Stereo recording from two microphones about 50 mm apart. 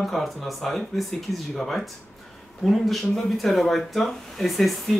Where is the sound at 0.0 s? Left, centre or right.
Centre.